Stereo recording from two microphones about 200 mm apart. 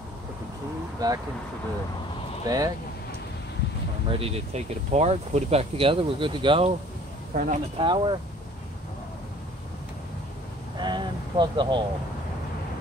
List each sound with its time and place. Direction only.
0.9 s speech: 20° right (ahead or behind)
2.4 s speech: 15° right (ahead or behind)
4.1 s speech: 30° right (ahead or behind)
7.3 s speech: 40° right (ahead or behind)
7.8 s speech: 25° right (ahead or behind)
10.8 s a sound: 25° right (ahead or behind)